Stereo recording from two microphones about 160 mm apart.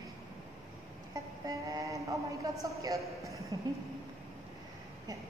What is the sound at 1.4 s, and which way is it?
A man's voice, 20° right (ahead or behind).